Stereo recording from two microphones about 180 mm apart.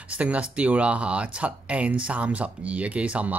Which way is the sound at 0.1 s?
5° right (ahead or behind).